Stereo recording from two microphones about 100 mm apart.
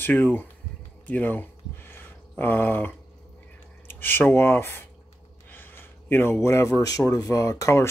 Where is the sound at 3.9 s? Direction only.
20° left (ahead or behind).